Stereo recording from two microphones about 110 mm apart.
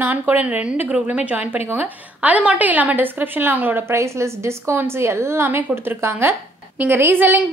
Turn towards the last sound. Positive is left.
turn(degrees=-20)  # may be behind; listen again after turning